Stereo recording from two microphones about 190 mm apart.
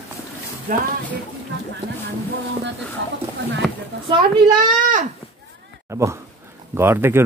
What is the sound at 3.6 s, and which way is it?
Speech, centre (ahead or behind).